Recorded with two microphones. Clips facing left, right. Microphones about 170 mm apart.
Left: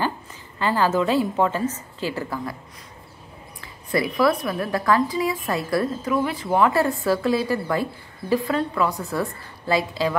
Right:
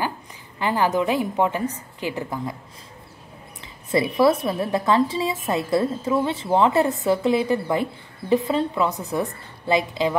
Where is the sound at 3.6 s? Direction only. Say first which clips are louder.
Right 2 dB; 25° right (ahead or behind).